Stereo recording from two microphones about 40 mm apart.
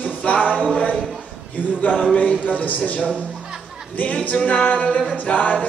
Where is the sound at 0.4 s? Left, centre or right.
Right.